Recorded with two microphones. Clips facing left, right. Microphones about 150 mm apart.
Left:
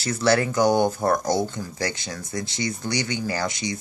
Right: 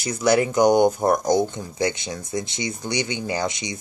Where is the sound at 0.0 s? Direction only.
20° right (ahead or behind).